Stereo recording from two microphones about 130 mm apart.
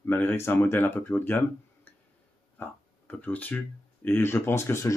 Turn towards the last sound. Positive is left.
turn(degrees=20)  # may be behind; listen again after turning